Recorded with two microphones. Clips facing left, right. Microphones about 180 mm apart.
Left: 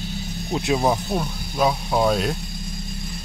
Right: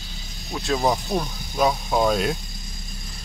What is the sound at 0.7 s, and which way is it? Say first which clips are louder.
Speech: even; 5° left (ahead or behind).